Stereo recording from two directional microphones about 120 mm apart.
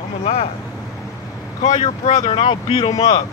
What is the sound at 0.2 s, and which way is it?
Speech, 70° left (ahead or behind).